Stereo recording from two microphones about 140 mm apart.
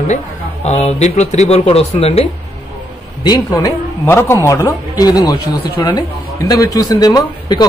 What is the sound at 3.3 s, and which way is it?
A man's voice, 30° left (ahead or behind).